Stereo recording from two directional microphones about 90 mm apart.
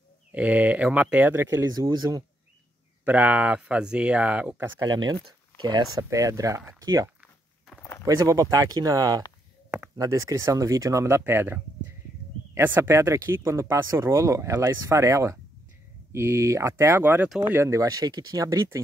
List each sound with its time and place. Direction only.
0.3 s speech: 15° right (ahead or behind)
3.1 s speech: 15° right (ahead or behind)
4.8 s speech: 50° right (ahead or behind)
5.9 s speech: 40° right (ahead or behind)